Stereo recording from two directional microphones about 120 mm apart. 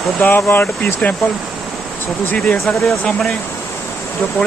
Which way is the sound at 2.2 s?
10° left (ahead or behind).